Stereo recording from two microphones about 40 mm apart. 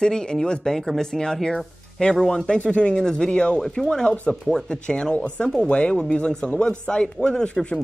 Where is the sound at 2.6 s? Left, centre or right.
Left.